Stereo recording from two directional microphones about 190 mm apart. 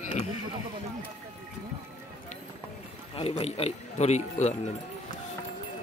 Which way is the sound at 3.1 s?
30° left (ahead or behind).